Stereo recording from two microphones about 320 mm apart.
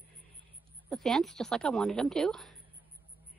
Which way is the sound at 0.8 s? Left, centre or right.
Centre.